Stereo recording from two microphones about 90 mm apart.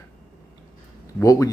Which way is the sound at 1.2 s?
35° left (ahead or behind).